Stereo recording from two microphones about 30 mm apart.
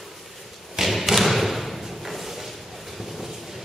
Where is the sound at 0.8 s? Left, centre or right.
Centre.